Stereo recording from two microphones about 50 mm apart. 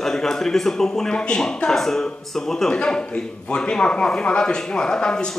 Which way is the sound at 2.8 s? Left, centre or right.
Centre.